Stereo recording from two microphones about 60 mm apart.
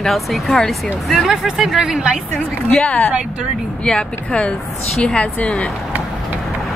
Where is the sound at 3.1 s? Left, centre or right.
Centre.